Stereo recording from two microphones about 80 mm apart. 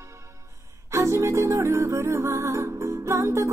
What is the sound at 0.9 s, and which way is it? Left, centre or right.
Music, right.